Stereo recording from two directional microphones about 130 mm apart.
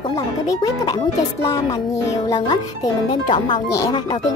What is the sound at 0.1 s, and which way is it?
Speech, 25° left (ahead or behind).